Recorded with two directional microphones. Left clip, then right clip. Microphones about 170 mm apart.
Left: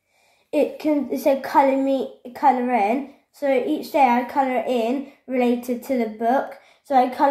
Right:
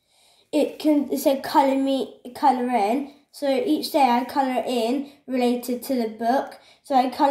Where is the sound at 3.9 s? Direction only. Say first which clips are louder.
Left 2 dB; 25° right (ahead or behind).